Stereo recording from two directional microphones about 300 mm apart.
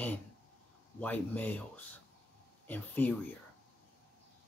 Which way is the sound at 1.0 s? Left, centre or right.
Centre.